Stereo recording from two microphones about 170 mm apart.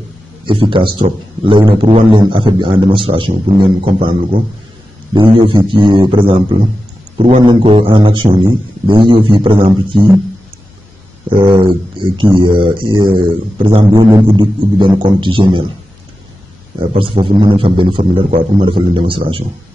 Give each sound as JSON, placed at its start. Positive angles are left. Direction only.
{"t": 0.5, "sound": "a man's voice", "side_deg": -30}
{"t": 5.1, "sound": "a man's voice", "side_deg": -30}
{"t": 7.2, "sound": "a man's voice", "side_deg": -45}
{"t": 7.4, "sound": "a man's voice", "side_deg": -30}
{"t": 11.4, "sound": "a man's voice", "side_deg": -25}
{"t": 16.9, "sound": "a man's voice", "side_deg": -30}